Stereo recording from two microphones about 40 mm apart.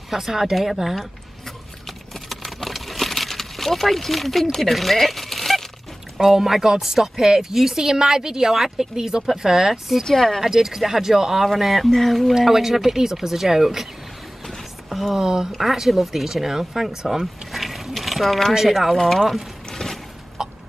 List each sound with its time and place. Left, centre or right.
0.1 s speech: centre
1.4 s a sound: centre
6.1 s speech: centre
10.0 s speech: centre
10.4 s speech: centre
11.4 s speech: centre
12.4 s speech: centre
14.9 s speech: centre
17.5 s a sound: centre
18.5 s speech: centre
18.9 s speech: centre
19.7 s a sound: centre
20.4 s chicken: centre